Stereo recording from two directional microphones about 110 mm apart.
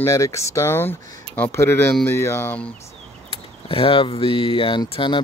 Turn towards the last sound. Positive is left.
turn(degrees=50)  # may be behind; listen again after turning